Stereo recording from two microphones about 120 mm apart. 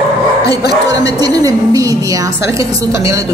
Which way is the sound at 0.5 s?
30° right (ahead or behind).